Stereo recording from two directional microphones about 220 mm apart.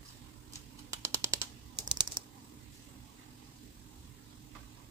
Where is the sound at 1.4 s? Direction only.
20° right (ahead or behind).